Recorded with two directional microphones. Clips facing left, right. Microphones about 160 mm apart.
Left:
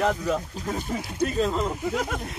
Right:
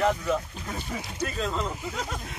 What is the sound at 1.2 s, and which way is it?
Speech, 40° left (ahead or behind).